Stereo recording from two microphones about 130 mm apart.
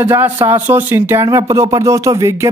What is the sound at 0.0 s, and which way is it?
Speech, 15° right (ahead or behind).